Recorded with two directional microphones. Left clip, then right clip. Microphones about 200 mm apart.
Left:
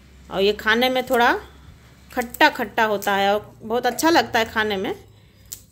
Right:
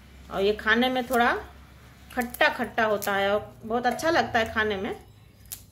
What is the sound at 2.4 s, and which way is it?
A woman's voice, 45° left (ahead or behind).